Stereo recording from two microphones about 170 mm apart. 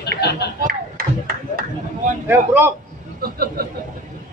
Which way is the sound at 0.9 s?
60° right (ahead or behind).